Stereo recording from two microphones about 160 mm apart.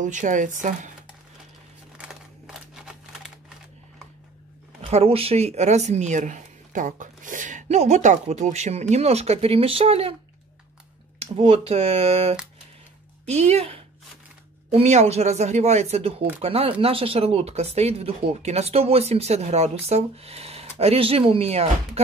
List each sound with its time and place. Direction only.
0.0 s speech: 50° right (ahead or behind)
2.0 s a sound: 5° right (ahead or behind)
4.8 s speech: 40° right (ahead or behind)
11.1 s speech: 40° right (ahead or behind)